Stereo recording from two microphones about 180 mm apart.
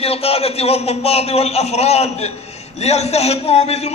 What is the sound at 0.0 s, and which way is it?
A man's voice, 35° left (ahead or behind).